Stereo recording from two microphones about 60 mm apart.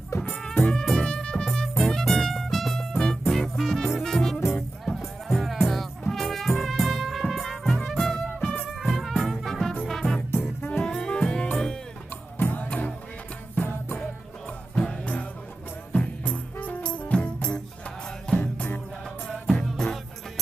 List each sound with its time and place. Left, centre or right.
0.2 s music: centre
8.8 s music: centre
10.3 s music: left
10.8 s music: centre
12.4 s music: left
14.8 s music: centre
18.4 s music: left